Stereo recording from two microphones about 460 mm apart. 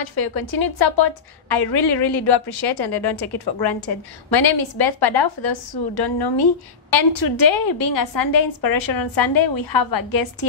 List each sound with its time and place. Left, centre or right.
0.0 s a woman's voice: left